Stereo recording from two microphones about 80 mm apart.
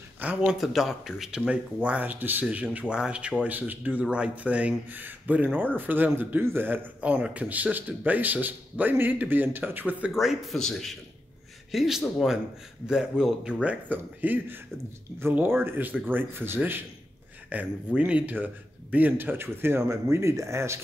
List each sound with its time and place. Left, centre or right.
0.5 s speech: centre
10.1 s speech: centre; by 20.8 s right